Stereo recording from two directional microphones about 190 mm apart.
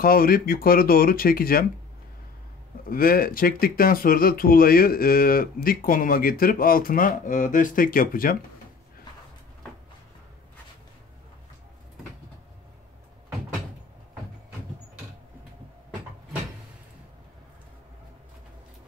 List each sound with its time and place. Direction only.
0.0 s speech: 50° left (ahead or behind)
2.8 s speech: 50° left (ahead or behind)